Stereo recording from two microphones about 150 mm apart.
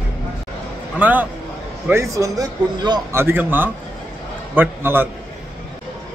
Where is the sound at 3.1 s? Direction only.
15° right (ahead or behind).